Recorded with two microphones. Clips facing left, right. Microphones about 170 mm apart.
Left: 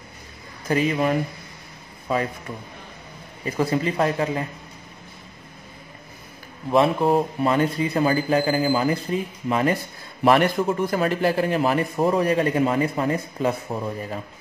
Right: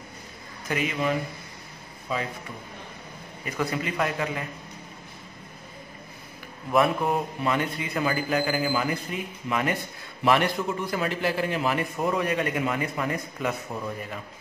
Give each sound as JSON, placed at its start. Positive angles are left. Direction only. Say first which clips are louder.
{"t": 0.7, "sound": "a man's voice", "louder": "left 6 dB", "side_deg": 35}
{"t": 2.1, "sound": "a man's voice", "louder": "left 6 dB", "side_deg": 50}
{"t": 3.4, "sound": "a man's voice", "louder": "left 6 dB", "side_deg": 30}
{"t": 6.7, "sound": "a man's voice", "louder": "left 5 dB", "side_deg": 30}
{"t": 10.2, "sound": "a man's voice", "louder": "left 5 dB", "side_deg": 45}